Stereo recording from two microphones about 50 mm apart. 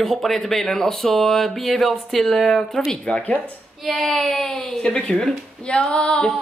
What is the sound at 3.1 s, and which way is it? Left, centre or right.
Speech, centre.